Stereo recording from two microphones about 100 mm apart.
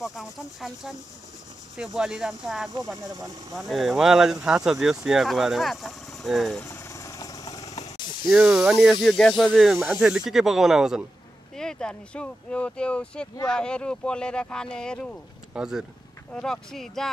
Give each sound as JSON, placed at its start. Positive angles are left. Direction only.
{"t": 0.0, "sound": "speech", "side_deg": 0}
{"t": 2.0, "sound": "speech", "side_deg": -5}
{"t": 6.6, "sound": "vehicle", "side_deg": 25}
{"t": 7.8, "sound": "a sound", "side_deg": 50}
{"t": 8.3, "sound": "speech", "side_deg": -5}
{"t": 11.5, "sound": "speech", "side_deg": 5}
{"t": 15.5, "sound": "speech", "side_deg": -5}
{"t": 16.3, "sound": "speech", "side_deg": 5}